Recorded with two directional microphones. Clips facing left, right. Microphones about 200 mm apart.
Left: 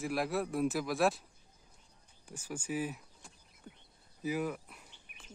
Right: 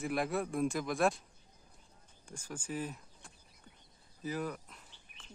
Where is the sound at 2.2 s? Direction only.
10° left (ahead or behind).